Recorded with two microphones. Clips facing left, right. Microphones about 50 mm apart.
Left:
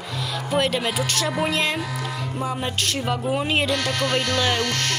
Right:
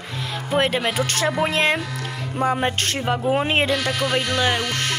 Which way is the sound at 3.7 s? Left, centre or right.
Centre.